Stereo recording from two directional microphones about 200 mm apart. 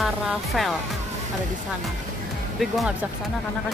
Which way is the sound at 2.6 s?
Centre (ahead or behind).